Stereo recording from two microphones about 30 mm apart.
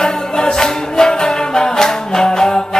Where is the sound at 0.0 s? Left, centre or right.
Left.